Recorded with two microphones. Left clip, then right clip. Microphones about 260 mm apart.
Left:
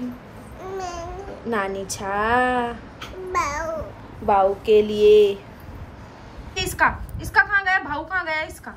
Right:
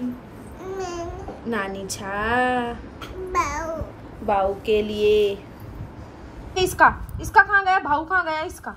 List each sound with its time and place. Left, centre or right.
0.6 s speech: centre
3.3 s babbling: centre
4.3 s a woman's voice: centre
6.5 s a woman's voice: centre